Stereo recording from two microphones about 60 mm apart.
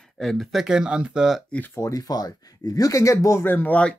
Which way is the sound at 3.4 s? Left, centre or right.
Left.